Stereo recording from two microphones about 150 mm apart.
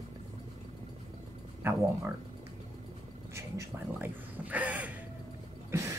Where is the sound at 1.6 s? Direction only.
15° right (ahead or behind).